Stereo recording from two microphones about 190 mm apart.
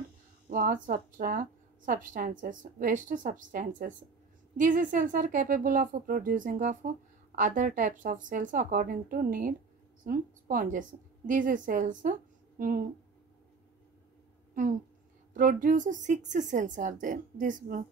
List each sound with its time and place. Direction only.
0.5 s a woman's voice: 45° right (ahead or behind)
15.3 s a woman's voice: 45° right (ahead or behind)